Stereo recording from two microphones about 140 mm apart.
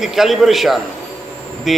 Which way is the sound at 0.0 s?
Centre (ahead or behind).